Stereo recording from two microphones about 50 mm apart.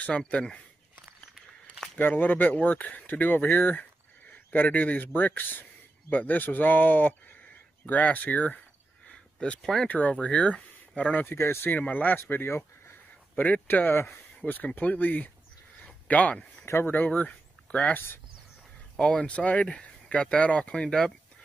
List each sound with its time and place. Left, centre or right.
0.0 s speech: left
2.0 s speech: left
9.1 s a sound: centre
9.8 s speech: left
11.3 s speech: left
11.9 s speech: left
12.3 s speech: left
13.4 s speech: left
14.4 s speech: left
17.9 s speech: left
18.9 s speech: centre
19.3 s speech: left